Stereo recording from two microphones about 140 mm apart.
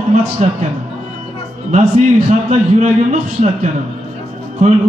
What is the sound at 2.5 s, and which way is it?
A man's voice, 55° right (ahead or behind).